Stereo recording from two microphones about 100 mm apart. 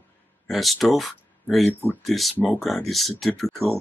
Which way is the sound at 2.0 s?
Centre (ahead or behind).